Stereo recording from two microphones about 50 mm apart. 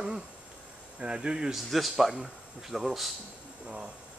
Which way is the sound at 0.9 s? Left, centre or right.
Centre.